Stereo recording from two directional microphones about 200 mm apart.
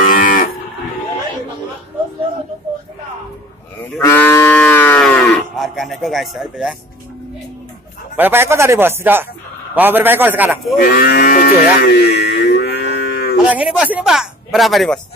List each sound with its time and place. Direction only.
0.0 s moo: 45° left (ahead or behind)
4.0 s cattle: 10° left (ahead or behind)
5.6 s speech: centre (ahead or behind)
8.2 s speech: 10° right (ahead or behind)
10.8 s livestock: 50° left (ahead or behind)
13.5 s speech: 5° right (ahead or behind)